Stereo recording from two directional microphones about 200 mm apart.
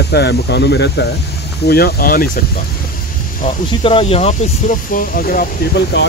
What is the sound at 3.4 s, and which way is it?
Speech, 30° left (ahead or behind).